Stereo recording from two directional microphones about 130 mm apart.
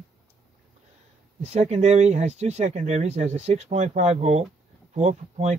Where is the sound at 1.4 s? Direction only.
60° right (ahead or behind).